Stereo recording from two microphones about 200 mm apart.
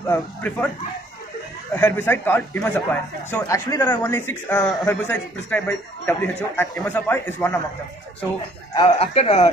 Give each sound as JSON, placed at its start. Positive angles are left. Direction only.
{"t": 0.0, "sound": "a man's voice", "side_deg": 10}
{"t": 1.8, "sound": "a man's voice", "side_deg": 10}
{"t": 8.7, "sound": "speech", "side_deg": 25}